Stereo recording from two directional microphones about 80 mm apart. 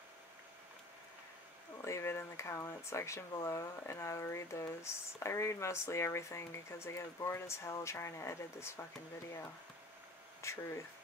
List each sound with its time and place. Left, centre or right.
1.8 s speech: left
10.4 s speech: left